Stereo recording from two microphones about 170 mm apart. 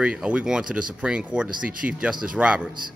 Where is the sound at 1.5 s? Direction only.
55° right (ahead or behind).